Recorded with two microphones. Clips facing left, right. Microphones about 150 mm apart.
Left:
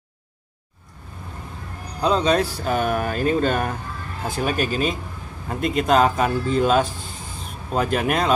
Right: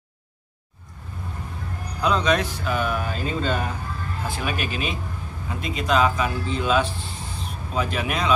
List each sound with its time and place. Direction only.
2.0 s speech: 30° left (ahead or behind); by 3.7 s 50° left (ahead or behind)
4.2 s speech: 40° left (ahead or behind)